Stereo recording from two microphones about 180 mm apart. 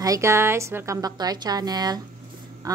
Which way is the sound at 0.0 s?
15° right (ahead or behind).